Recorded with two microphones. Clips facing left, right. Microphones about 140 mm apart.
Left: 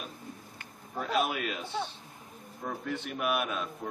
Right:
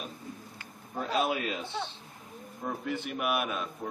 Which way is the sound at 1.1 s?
30° right (ahead or behind).